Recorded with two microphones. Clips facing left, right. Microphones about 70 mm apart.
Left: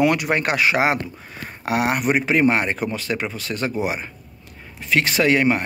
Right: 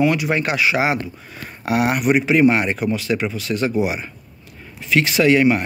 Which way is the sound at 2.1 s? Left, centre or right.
Left.